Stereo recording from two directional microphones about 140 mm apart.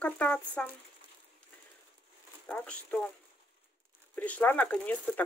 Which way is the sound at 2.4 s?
10° left (ahead or behind).